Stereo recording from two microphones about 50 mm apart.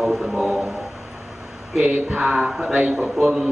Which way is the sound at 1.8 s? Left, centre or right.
Right.